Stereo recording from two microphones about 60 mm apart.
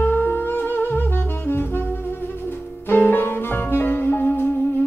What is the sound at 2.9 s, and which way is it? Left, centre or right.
Music, left.